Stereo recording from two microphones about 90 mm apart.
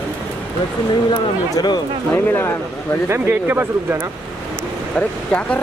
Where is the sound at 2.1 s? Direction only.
25° left (ahead or behind).